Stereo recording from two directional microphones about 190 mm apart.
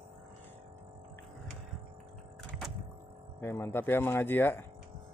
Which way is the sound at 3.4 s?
10° left (ahead or behind).